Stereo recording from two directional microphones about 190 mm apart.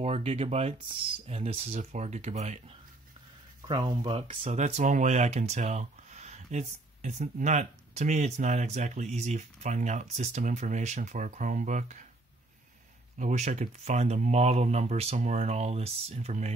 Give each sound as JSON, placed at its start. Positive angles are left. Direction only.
{"t": 0.0, "sound": "speech", "side_deg": -35}
{"t": 3.6, "sound": "speech", "side_deg": -25}
{"t": 13.2, "sound": "speech", "side_deg": -40}